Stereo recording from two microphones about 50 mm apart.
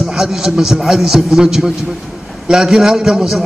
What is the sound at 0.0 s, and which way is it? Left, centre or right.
A man's voice, centre.